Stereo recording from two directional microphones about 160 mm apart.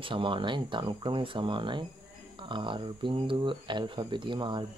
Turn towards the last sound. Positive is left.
turn(degrees=-30)  # may be behind; listen again after turning